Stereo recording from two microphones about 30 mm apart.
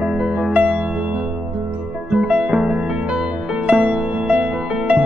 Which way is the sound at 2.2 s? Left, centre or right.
Right.